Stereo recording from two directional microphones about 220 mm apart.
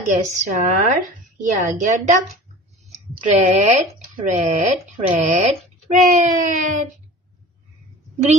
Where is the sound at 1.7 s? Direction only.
35° right (ahead or behind).